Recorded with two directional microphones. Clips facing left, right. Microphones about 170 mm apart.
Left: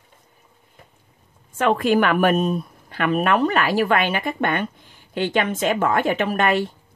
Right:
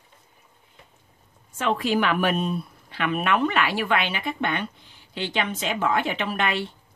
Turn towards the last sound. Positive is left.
turn(degrees=45)  # may be behind; listen again after turning